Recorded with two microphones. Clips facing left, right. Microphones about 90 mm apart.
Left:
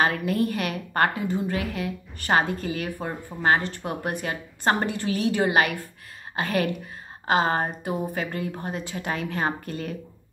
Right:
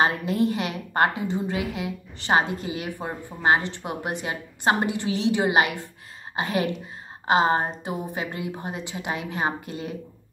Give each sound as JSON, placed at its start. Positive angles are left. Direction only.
{"t": 0.0, "sound": "a woman's voice", "side_deg": -25}